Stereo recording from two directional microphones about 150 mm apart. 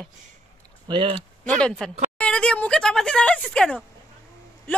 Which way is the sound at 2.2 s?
5° left (ahead or behind).